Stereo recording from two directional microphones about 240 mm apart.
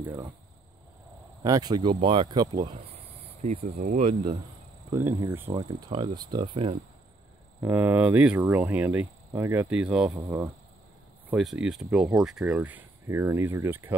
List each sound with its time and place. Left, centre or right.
0.0 s speech: centre
1.4 s speech: centre
4.9 s speech: centre
7.6 s speech: centre
11.2 s speech: centre